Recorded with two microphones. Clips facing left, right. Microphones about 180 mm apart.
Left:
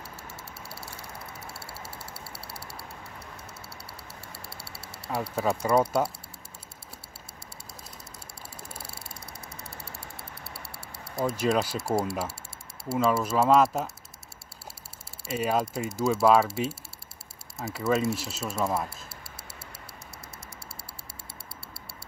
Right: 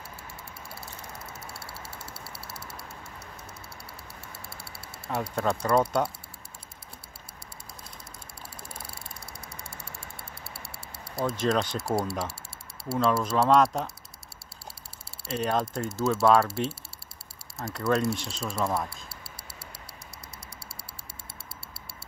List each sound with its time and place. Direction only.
2.5 s a sound: 35° left (ahead or behind)
5.3 s speech: 5° left (ahead or behind)
11.1 s speech: 5° left (ahead or behind)
15.2 s speech: 5° left (ahead or behind)